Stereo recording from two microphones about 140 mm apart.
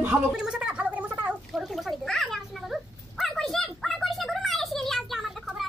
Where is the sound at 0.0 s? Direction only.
10° right (ahead or behind).